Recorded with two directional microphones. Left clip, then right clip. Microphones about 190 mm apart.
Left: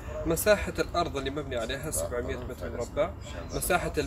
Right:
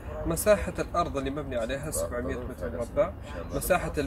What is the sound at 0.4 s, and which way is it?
Speech, 10° left (ahead or behind).